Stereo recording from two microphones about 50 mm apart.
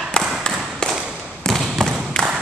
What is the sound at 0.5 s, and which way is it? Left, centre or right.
Tap, centre.